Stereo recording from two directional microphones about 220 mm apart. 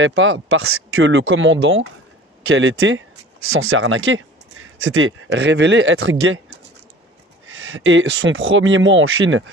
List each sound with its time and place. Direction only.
0.0 s speech: 60° right (ahead or behind)
7.4 s speech: 65° right (ahead or behind)